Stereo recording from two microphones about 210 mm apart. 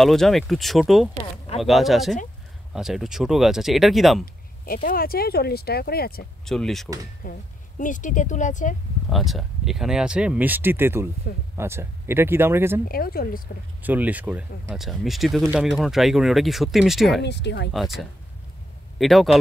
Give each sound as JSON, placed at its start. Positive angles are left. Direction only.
{"t": 0.0, "sound": "speech", "side_deg": 0}
{"t": 4.8, "sound": "speech", "side_deg": 45}
{"t": 6.4, "sound": "speech", "side_deg": 0}
{"t": 7.2, "sound": "speech", "side_deg": 40}
{"t": 9.1, "sound": "speech", "side_deg": 0}
{"t": 12.8, "sound": "speech", "side_deg": 45}
{"t": 13.8, "sound": "speech", "side_deg": -10}
{"t": 17.2, "sound": "speech", "side_deg": 55}
{"t": 17.7, "sound": "speech", "side_deg": 0}